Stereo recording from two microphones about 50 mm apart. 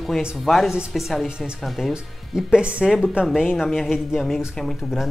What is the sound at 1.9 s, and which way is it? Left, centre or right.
Speech, centre.